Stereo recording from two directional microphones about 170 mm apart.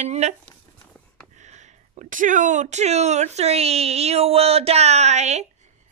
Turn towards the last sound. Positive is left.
turn(degrees=-40)  # may be behind; listen again after turning